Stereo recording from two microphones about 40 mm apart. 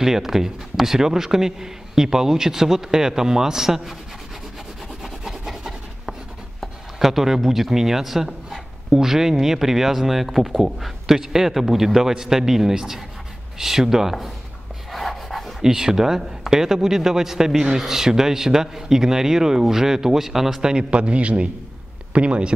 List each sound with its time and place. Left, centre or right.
0.0 s a man's voice: centre
5.0 s rub: centre
6.6 s a man's voice: centre
14.9 s a sound: centre
15.6 s a man's voice: centre
20.6 s a man's voice: right